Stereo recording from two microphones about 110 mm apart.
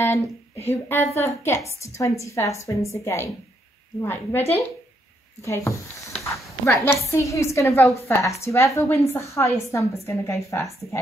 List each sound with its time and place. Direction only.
0.7 s a woman's voice: 20° left (ahead or behind)
4.4 s speech: 70° left (ahead or behind)
5.4 s a woman's voice: 25° left (ahead or behind)
6.2 s a sound: 25° left (ahead or behind)
7.1 s a woman's voice: 30° left (ahead or behind)